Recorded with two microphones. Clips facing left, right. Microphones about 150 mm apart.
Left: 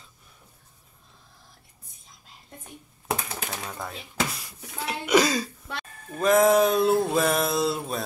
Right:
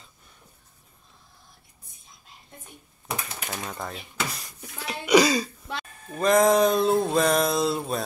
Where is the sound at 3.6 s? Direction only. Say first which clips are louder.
Right 1 dB; 5° left (ahead or behind).